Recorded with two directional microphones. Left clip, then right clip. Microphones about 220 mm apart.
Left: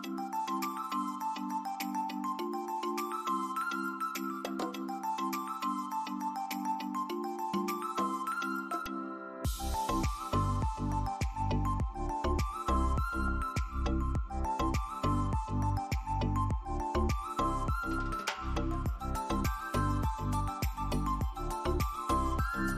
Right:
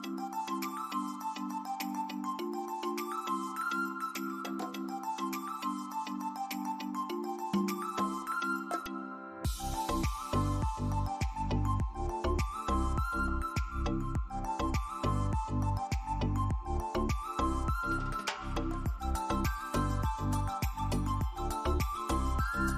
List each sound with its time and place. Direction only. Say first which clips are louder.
0.5 s music: left 2 dB; centre (ahead or behind)
3.3 s music: left 1 dB; centre (ahead or behind)
7.5 s music: even; centre (ahead or behind)
9.8 s music: left 1 dB; centre (ahead or behind)
12.2 s music: even; centre (ahead or behind)
14.5 s music: left 2 dB; centre (ahead or behind)
16.9 s music: left 1 dB; centre (ahead or behind)
19.2 s music: right 1 dB; centre (ahead or behind)
21.6 s music: left 4 dB; centre (ahead or behind)